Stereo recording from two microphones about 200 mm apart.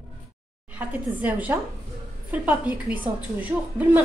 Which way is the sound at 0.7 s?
10° right (ahead or behind).